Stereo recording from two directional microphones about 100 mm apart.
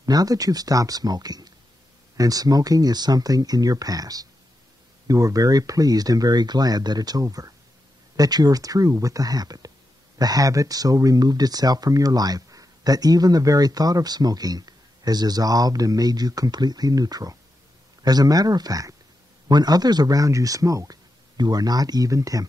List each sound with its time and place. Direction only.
0.0 s speech: 40° right (ahead or behind)